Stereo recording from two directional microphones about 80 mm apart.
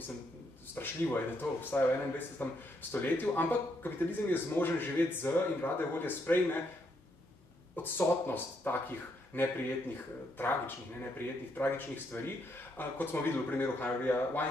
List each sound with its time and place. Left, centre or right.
0.7 s speech: left
7.7 s speech: left
11.1 s speech: left